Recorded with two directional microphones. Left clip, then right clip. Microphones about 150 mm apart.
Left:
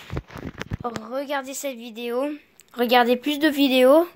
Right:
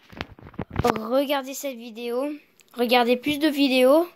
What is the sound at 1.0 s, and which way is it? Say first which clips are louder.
Speech: right 7 dB; 60° right (ahead or behind).